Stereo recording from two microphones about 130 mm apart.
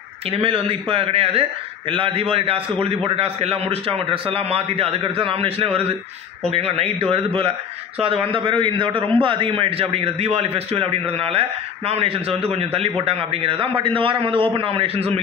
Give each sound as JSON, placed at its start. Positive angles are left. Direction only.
{"t": 0.3, "sound": "a man's voice", "side_deg": -45}